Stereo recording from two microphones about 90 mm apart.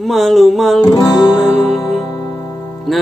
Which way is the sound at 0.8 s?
40° left (ahead or behind).